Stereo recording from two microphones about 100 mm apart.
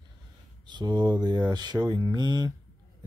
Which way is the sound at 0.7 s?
50° right (ahead or behind).